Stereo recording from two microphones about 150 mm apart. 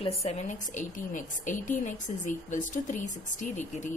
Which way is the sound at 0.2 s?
50° left (ahead or behind).